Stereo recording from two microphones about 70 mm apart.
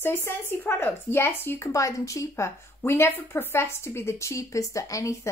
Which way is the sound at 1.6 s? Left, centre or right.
Left.